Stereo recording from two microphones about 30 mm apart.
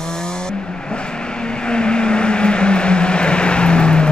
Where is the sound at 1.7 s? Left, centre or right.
Left.